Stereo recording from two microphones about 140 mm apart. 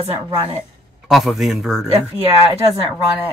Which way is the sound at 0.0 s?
45° right (ahead or behind).